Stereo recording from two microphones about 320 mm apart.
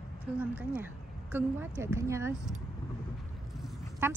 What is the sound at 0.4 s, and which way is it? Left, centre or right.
A woman's voice, centre.